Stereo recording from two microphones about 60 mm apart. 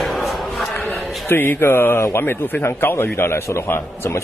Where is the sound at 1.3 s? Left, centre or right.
Left.